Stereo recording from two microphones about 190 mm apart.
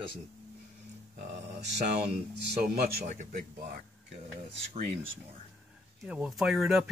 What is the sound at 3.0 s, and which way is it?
Speech, 40° right (ahead or behind).